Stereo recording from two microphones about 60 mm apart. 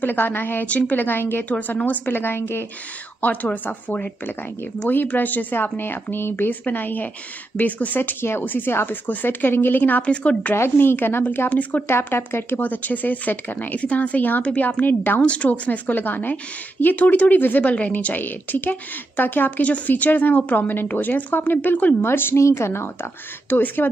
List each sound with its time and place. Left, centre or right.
0.0 s speech: left
1.5 s speech: left
2.0 s speech: left
3.2 s speech: left
10.0 s speech: centre
10.5 s speech: left
15.2 s speech: left
22.0 s speech: left
23.5 s speech: left